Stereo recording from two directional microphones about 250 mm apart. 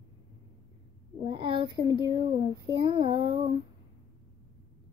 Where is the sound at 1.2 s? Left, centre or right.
Centre.